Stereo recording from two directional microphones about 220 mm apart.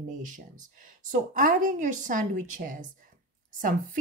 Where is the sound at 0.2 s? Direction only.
35° right (ahead or behind).